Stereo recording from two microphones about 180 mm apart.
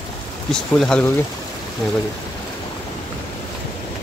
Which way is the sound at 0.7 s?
5° left (ahead or behind).